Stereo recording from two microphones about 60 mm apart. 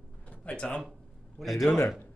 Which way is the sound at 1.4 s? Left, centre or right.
Centre.